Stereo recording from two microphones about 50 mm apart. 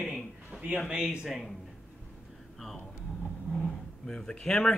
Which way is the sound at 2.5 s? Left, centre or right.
Centre.